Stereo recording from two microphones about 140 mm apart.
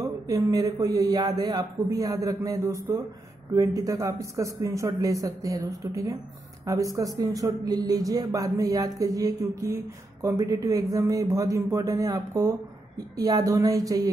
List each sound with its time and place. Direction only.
0.0 s a man's voice: 25° right (ahead or behind)